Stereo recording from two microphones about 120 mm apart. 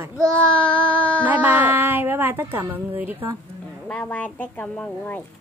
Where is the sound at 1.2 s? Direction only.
15° right (ahead or behind).